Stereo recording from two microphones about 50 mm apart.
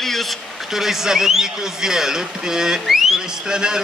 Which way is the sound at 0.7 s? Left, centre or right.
Centre.